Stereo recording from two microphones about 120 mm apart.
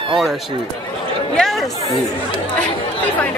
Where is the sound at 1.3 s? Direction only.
Centre (ahead or behind).